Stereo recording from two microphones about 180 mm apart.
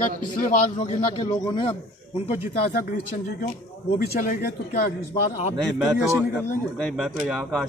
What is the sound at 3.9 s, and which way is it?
Speech, 55° left (ahead or behind).